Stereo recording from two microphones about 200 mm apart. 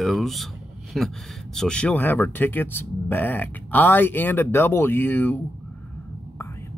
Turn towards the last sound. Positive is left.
turn(degrees=10)  # may be behind; listen again after turning